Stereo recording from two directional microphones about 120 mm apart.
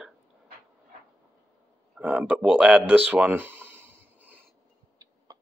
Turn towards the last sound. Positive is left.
turn(degrees=-30)  # may be behind; listen again after turning